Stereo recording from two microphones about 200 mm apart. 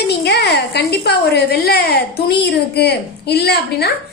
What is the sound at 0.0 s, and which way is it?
A woman's voice, 55° left (ahead or behind).